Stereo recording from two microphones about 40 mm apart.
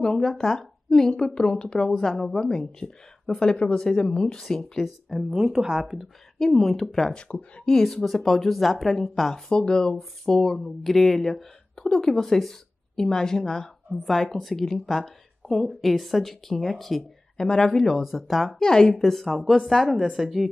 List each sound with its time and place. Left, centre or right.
0.0 s speech: centre
5.3 s a woman's voice: centre
6.6 s speech: centre
7.2 s speech: left
7.6 s speech: centre
9.5 s speech: left
18.0 s speech: centre
18.6 s speech: centre